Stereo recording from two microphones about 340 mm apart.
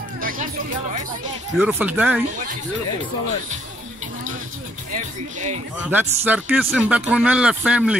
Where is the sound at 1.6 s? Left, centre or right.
Centre.